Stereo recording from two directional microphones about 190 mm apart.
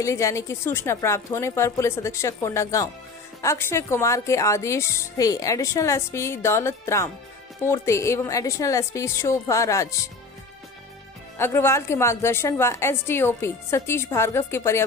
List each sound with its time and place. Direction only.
0.0 s a woman's voice: 15° left (ahead or behind)
11.3 s a woman's voice: 10° left (ahead or behind)